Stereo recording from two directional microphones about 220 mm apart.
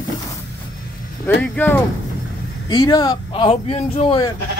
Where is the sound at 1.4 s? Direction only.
5° left (ahead or behind).